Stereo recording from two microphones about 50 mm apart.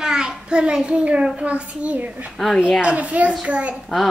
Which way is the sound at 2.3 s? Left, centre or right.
Centre.